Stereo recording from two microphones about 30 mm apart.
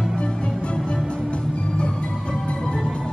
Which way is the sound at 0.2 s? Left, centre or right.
Left.